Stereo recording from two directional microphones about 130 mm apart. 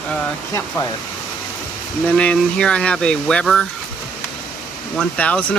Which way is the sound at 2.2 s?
10° left (ahead or behind).